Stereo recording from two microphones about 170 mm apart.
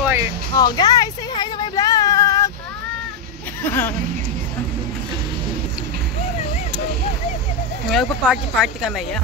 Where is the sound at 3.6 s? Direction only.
10° left (ahead or behind).